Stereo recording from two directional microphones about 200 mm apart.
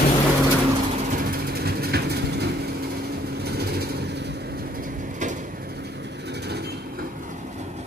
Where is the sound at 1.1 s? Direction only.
45° right (ahead or behind).